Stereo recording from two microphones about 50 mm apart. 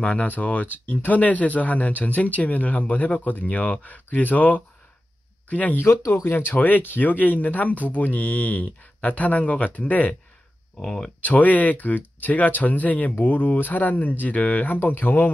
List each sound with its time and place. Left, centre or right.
0.0 s speech: left
5.8 s speech: left
6.3 s speech: left
10.8 s speech: centre
11.1 s speech: left